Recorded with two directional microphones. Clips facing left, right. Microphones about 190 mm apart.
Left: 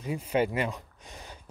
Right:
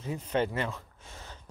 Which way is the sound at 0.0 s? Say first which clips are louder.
Left 2 dB; 10° left (ahead or behind).